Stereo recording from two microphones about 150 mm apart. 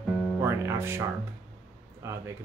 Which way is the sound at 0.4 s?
15° right (ahead or behind).